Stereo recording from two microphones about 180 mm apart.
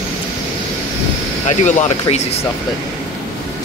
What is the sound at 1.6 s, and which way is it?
Speech, 40° left (ahead or behind).